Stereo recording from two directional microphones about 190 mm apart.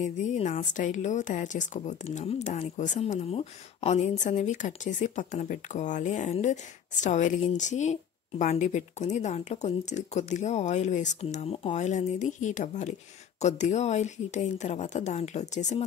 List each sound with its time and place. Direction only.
0.0 s speech: 40° left (ahead or behind)